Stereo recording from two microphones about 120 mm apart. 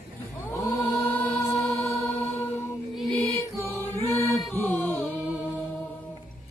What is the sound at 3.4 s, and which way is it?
Music, 20° left (ahead or behind).